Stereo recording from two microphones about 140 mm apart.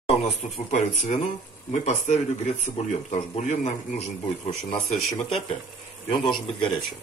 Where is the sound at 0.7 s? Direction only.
55° left (ahead or behind).